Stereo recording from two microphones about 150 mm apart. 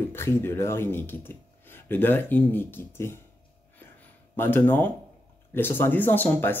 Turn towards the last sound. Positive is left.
turn(degrees=10)  # may be behind; listen again after turning